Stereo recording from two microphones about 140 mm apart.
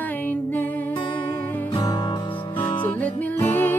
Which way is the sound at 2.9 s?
10° left (ahead or behind).